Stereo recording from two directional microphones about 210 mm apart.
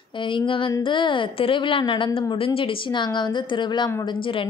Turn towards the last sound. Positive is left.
turn(degrees=20)  # may be behind; listen again after turning